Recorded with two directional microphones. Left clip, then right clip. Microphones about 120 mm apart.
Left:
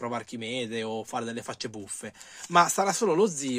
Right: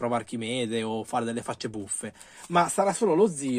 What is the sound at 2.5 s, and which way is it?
Speech, 25° left (ahead or behind).